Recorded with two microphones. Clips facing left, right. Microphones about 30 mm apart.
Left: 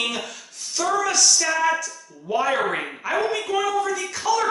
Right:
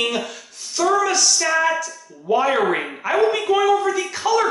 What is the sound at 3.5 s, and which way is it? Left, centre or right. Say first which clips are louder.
Speech: right 5 dB; right.